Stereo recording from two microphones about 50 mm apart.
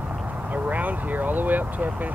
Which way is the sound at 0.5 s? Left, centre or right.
Right.